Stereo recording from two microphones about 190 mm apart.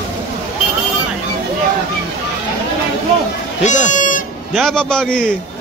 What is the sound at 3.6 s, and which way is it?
Speech, 40° left (ahead or behind).